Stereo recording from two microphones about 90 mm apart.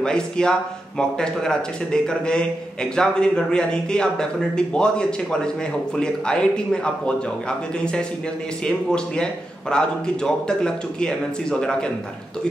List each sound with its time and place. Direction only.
0.0 s speech: 10° left (ahead or behind)